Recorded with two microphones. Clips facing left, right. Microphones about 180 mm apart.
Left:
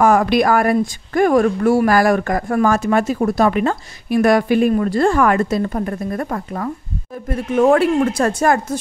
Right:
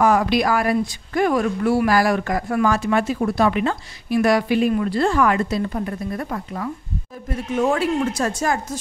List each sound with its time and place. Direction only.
0.0 s a woman's voice: 50° left (ahead or behind)